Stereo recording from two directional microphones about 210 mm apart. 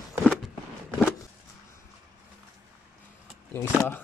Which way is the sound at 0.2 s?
Centre (ahead or behind).